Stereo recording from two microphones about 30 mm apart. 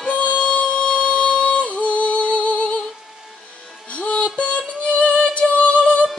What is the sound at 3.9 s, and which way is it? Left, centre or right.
Music, left.